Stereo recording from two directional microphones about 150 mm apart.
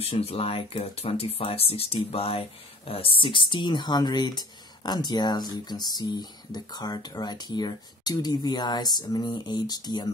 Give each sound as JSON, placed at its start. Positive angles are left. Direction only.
{"t": 0.0, "sound": "speech", "side_deg": 40}